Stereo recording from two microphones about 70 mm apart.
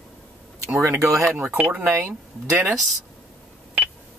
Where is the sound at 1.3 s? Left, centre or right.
Right.